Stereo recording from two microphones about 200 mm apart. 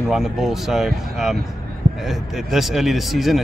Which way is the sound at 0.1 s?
Centre (ahead or behind).